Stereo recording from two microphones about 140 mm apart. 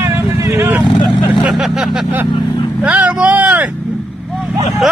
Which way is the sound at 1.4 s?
5° right (ahead or behind).